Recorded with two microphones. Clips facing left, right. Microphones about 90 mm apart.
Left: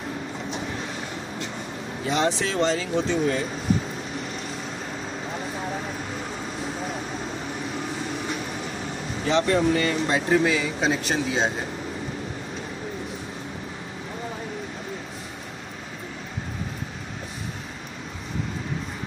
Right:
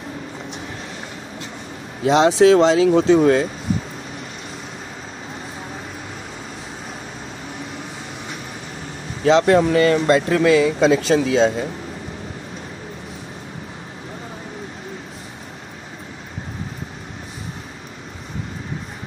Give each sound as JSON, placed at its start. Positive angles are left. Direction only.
{"t": 2.0, "sound": "speech", "side_deg": -85}
{"t": 3.2, "sound": "speech", "side_deg": -70}
{"t": 9.2, "sound": "speech", "side_deg": -80}